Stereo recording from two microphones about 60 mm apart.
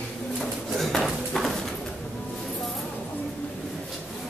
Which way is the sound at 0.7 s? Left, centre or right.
Centre.